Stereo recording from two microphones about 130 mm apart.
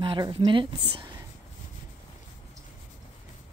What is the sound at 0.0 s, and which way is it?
Speech, 40° right (ahead or behind).